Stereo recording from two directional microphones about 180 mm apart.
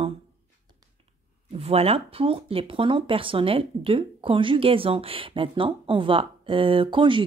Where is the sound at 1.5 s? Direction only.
35° right (ahead or behind).